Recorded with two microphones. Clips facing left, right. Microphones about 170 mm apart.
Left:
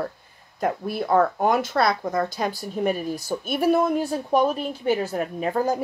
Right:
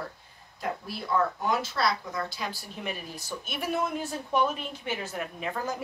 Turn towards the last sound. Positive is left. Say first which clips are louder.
# left 9 dB
turn(degrees=40)  # may be behind; listen again after turning